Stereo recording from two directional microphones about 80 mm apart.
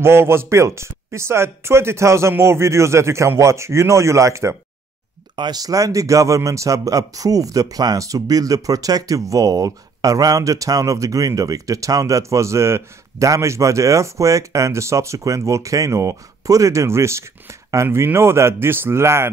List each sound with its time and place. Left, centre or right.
0.0 s speech: right
5.3 s speech: right